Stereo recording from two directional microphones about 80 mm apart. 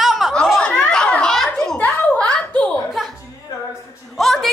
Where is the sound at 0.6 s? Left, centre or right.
Centre.